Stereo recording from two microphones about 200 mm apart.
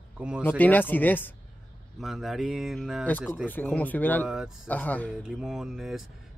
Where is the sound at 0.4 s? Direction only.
10° left (ahead or behind).